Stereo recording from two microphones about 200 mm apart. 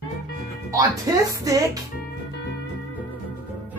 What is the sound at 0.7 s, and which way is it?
Speech, 15° right (ahead or behind).